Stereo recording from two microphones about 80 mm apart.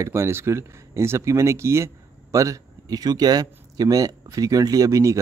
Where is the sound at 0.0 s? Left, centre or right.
Right.